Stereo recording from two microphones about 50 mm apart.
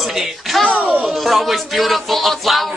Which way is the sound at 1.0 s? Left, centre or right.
Centre.